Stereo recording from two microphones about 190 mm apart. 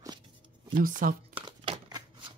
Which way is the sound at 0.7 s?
45° right (ahead or behind).